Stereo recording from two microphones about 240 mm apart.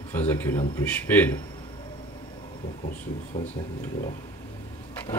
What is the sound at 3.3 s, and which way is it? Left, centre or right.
Speech, left.